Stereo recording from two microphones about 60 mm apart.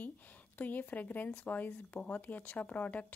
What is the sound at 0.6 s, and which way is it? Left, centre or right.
Speech, left.